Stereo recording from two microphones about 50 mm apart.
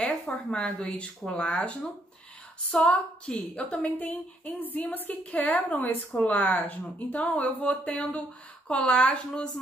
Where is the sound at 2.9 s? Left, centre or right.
Left.